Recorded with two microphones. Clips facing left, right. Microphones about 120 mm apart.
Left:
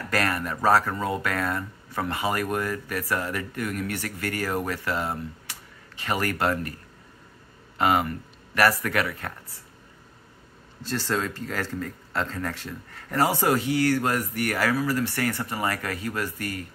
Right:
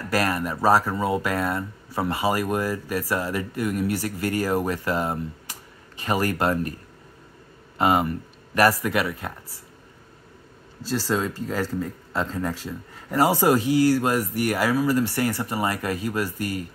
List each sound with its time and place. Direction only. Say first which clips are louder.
0.1 s speech: right 3 dB; 15° right (ahead or behind)
6.3 s speech: right 2 dB; 20° right (ahead or behind)
7.7 s speech: right 2 dB; 25° right (ahead or behind)
11.1 s speech: right 2 dB; 10° right (ahead or behind)